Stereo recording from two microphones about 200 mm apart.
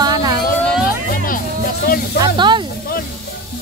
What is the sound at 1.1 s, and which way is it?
Music, 45° left (ahead or behind).